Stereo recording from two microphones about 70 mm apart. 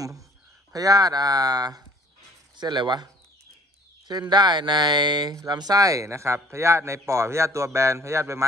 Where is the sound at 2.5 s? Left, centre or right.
Right.